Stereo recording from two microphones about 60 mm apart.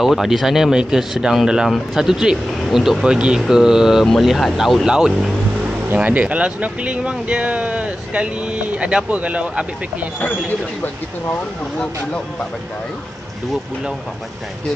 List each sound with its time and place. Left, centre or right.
0.0 s speech: centre
6.0 s speech: right
11.8 s speech: centre